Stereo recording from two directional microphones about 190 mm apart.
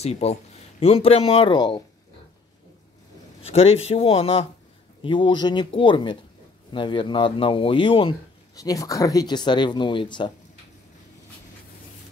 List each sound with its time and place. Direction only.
0.0 s speech: 35° left (ahead or behind)
3.4 s speech: 30° left (ahead or behind)